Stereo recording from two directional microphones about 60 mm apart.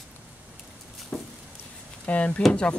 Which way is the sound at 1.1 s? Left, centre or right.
Centre.